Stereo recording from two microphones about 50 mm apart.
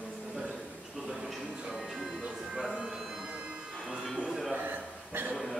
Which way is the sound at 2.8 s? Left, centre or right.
Centre.